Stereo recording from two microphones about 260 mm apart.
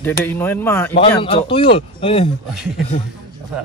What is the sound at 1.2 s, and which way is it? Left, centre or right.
Speech, centre.